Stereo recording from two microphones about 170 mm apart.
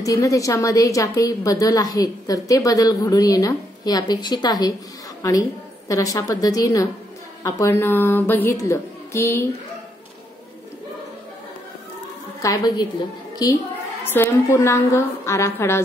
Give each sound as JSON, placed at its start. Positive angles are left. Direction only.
{"t": 0.0, "sound": "a woman's voice", "side_deg": 20}
{"t": 12.4, "sound": "a woman's voice", "side_deg": 20}
{"t": 14.0, "sound": "speech", "side_deg": 10}